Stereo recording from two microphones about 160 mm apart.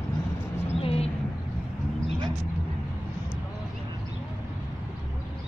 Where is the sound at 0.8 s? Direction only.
40° left (ahead or behind).